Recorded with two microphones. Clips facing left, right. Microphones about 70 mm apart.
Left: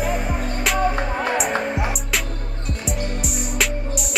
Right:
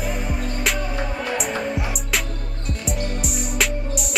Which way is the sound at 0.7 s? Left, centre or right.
Left.